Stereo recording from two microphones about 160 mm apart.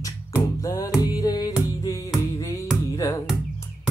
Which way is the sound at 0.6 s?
20° left (ahead or behind).